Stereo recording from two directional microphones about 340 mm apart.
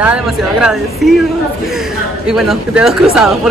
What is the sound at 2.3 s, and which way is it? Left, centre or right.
A woman's voice, centre.